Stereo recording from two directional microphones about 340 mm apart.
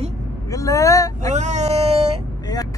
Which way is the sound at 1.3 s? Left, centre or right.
Centre.